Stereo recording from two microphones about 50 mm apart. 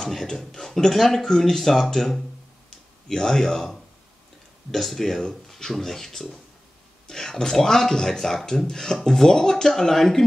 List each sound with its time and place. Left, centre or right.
0.0 s speech: centre